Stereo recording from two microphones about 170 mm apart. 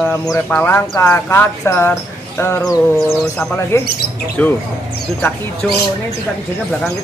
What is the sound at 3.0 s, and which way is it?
Bird, centre (ahead or behind).